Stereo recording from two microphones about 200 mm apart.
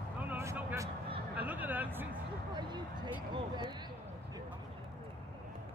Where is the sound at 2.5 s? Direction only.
20° right (ahead or behind).